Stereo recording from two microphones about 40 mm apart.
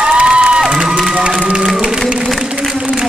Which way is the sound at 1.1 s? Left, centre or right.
Right.